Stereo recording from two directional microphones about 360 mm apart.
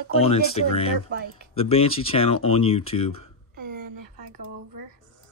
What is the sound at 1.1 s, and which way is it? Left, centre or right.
Speech, right.